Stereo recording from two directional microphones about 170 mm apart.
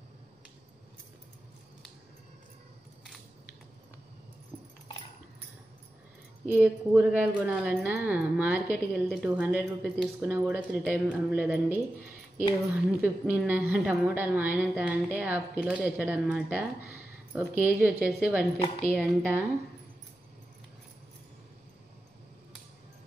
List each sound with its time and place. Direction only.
6.4 s a woman's voice: 10° right (ahead or behind)
13.0 s a woman's voice: 5° right (ahead or behind)